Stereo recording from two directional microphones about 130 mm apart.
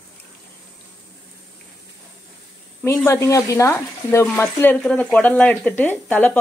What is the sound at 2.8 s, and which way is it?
Speech, 20° left (ahead or behind).